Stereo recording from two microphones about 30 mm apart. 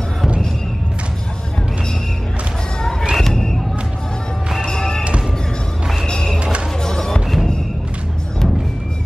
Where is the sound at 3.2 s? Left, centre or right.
Centre.